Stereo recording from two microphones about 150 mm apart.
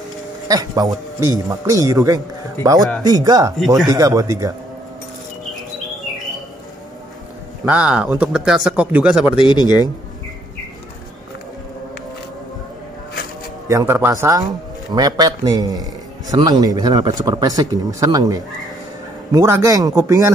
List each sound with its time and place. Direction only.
0.5 s a man's voice: 25° right (ahead or behind)
3.5 s speech: centre (ahead or behind)
3.9 s a man's voice: 25° right (ahead or behind)
7.6 s a man's voice: 5° right (ahead or behind)
9.4 s speech: 30° left (ahead or behind)
13.7 s a man's voice: 20° right (ahead or behind)